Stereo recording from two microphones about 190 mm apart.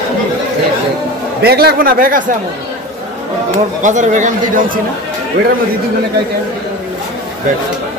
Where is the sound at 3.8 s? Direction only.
40° right (ahead or behind).